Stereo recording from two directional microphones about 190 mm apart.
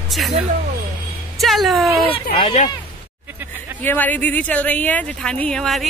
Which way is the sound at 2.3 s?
30° left (ahead or behind).